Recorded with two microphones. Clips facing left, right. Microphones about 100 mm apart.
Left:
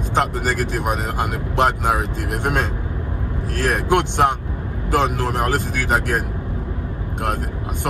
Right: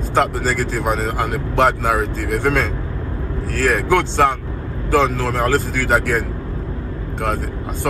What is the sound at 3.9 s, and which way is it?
Speech, 15° left (ahead or behind).